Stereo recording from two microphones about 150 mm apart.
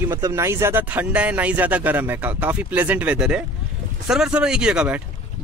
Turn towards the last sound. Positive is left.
turn(degrees=-5)  # may be behind; listen again after turning